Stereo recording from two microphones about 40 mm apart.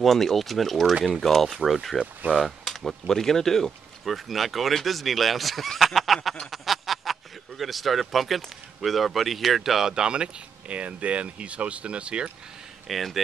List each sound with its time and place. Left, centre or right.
0.0 s speech: centre
4.0 s speech: centre
9.9 s speech: right
12.8 s speech: centre